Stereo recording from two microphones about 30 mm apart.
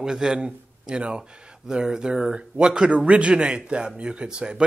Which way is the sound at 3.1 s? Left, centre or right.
Right.